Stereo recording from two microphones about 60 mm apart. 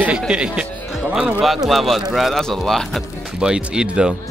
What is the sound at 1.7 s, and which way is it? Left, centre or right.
Speech, centre.